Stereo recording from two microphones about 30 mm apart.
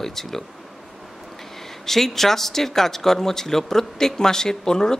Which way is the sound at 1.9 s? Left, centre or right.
Centre.